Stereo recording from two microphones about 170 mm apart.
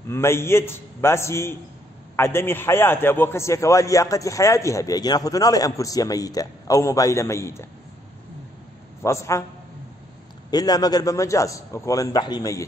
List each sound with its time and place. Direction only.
0.1 s a man's voice: 15° left (ahead or behind)
9.0 s a man's voice: 15° left (ahead or behind)
10.5 s a man's voice: 25° left (ahead or behind)